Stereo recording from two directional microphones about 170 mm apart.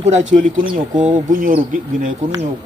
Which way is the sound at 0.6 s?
30° right (ahead or behind).